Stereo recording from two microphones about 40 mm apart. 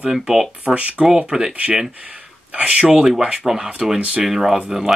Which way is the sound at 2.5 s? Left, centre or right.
Right.